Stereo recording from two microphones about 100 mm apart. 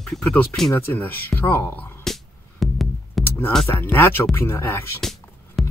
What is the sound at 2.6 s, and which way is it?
Music, centre (ahead or behind).